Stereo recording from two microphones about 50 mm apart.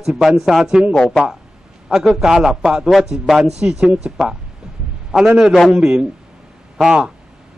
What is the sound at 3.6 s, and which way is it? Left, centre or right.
A man's voice, centre.